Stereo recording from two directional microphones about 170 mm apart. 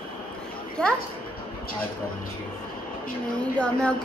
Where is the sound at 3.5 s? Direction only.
5° left (ahead or behind).